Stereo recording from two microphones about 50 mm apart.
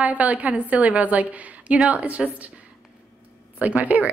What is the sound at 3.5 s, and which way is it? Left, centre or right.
Speech, right.